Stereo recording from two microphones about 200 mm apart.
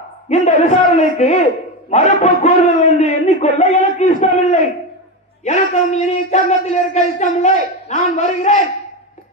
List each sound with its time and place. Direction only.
0.3 s speech: 35° left (ahead or behind)